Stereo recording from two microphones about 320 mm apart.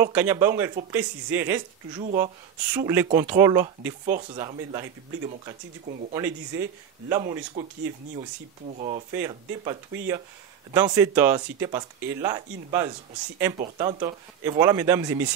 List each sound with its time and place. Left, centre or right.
0.0 s speech: centre
8.6 s speech: right
9.1 s speech: centre